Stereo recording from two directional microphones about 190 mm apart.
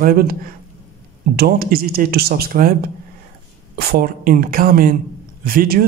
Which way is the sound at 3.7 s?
55° right (ahead or behind).